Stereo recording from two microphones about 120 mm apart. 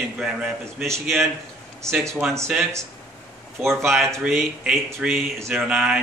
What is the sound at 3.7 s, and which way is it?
Speech, centre (ahead or behind).